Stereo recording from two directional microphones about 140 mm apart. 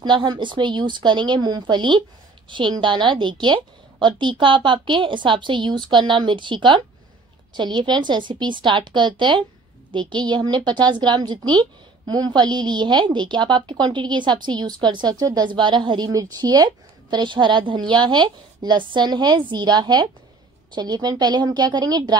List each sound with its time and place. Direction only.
0.0 s a woman's voice: 35° right (ahead or behind)